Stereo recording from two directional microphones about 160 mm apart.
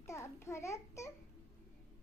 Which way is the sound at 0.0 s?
15° left (ahead or behind).